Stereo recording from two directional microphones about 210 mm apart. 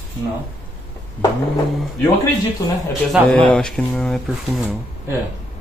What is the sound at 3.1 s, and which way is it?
Speech, 5° left (ahead or behind).